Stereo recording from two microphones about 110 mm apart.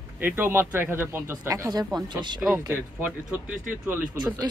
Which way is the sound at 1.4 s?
30° right (ahead or behind).